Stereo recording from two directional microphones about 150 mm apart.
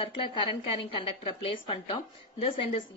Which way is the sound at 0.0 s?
35° left (ahead or behind).